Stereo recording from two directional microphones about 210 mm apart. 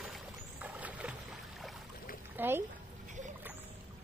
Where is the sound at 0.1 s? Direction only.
5° right (ahead or behind).